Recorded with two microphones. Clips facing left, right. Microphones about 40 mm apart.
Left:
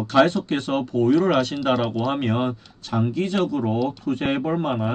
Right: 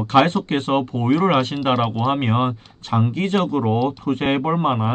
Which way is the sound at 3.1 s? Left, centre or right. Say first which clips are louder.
Right 2 dB; right.